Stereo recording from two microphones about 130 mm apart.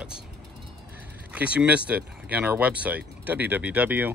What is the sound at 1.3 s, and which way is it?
Speech, 10° right (ahead or behind).